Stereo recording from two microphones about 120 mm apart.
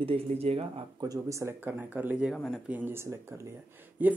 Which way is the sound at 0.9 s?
30° right (ahead or behind).